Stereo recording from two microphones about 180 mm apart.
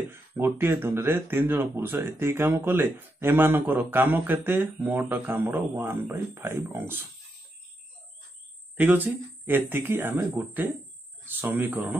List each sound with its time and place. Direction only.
0.1 s speech: 15° right (ahead or behind)
8.7 s speech: 10° right (ahead or behind)